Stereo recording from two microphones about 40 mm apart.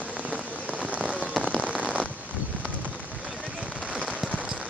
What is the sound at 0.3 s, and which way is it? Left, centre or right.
Rain on surface, right.